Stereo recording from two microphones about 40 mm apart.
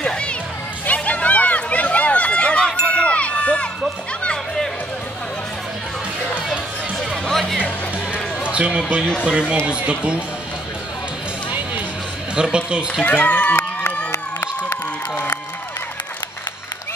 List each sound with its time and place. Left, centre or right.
0.1 s music: left
0.9 s a sound: left
2.7 s crowd: left
7.2 s music: centre
8.1 s a sound: right
9.2 s speech: right
12.4 s speech: right
13.0 s speech: left